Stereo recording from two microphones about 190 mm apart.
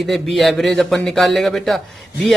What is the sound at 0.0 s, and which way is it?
Speech, centre (ahead or behind).